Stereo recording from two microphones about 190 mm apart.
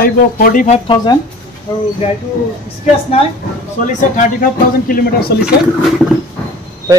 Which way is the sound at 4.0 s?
45° left (ahead or behind).